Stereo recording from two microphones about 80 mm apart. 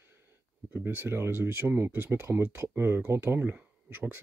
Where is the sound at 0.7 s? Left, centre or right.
Right.